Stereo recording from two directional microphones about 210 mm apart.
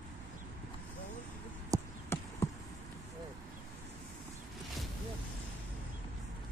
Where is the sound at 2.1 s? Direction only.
10° left (ahead or behind).